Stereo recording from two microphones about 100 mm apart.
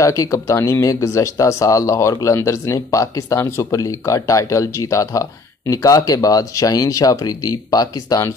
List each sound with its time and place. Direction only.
0.0 s speech: 35° left (ahead or behind)